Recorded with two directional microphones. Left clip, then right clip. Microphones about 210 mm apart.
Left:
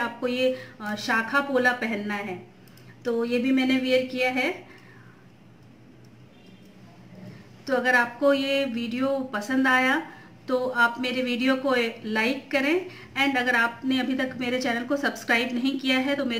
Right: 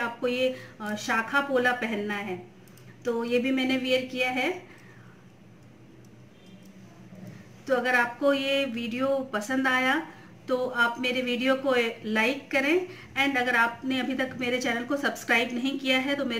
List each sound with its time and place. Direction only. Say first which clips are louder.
0.0 s speech: left 2 dB; 5° left (ahead or behind)
7.6 s speech: left 2 dB; 5° left (ahead or behind)